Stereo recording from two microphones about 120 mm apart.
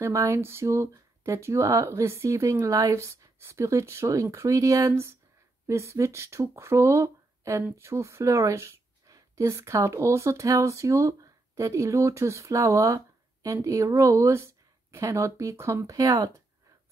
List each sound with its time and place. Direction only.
0.0 s speech: 25° right (ahead or behind)